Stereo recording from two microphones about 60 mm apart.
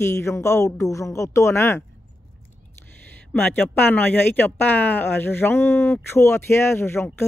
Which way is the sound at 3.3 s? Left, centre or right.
Left.